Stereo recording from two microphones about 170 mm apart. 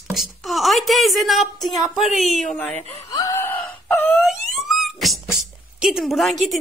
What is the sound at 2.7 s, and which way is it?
Speech, 40° left (ahead or behind).